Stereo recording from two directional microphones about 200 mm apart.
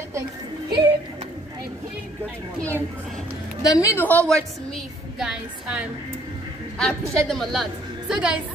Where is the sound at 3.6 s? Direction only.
15° left (ahead or behind); by 5.8 s 5° right (ahead or behind).